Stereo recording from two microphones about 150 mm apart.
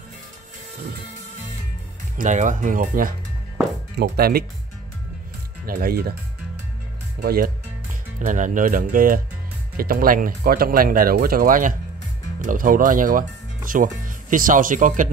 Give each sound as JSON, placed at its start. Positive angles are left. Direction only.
{"t": 2.1, "sound": "speech", "side_deg": -55}
{"t": 4.2, "sound": "speech", "side_deg": -85}
{"t": 5.7, "sound": "speech", "side_deg": -80}
{"t": 7.2, "sound": "speech", "side_deg": -75}
{"t": 8.3, "sound": "speech", "side_deg": -60}